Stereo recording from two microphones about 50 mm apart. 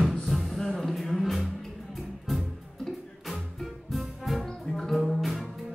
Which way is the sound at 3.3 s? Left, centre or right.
Centre.